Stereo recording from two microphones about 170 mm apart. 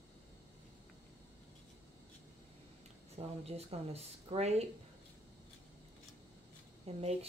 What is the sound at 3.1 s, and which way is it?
A woman's voice, 35° right (ahead or behind).